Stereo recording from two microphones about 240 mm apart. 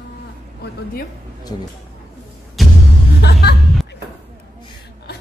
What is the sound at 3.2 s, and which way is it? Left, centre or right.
Music, left.